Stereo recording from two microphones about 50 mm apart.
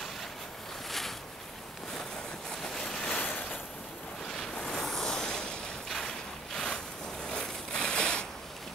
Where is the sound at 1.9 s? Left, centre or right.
Centre.